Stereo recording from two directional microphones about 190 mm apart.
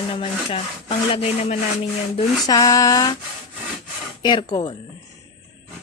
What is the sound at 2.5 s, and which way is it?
Speech, 20° left (ahead or behind).